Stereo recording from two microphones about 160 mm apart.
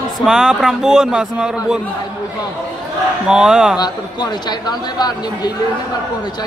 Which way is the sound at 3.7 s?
25° left (ahead or behind).